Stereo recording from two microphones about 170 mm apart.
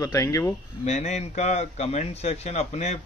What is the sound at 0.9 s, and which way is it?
A man's voice, 45° left (ahead or behind).